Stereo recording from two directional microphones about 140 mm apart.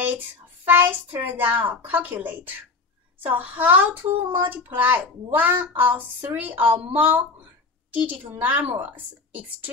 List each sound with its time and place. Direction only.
0.7 s a child's voice: 15° right (ahead or behind)